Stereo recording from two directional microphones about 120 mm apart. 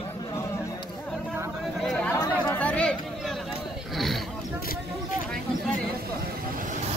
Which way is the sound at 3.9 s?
Centre (ahead or behind).